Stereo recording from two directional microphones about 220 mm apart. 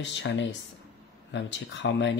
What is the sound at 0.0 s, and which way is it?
Speech, 55° left (ahead or behind).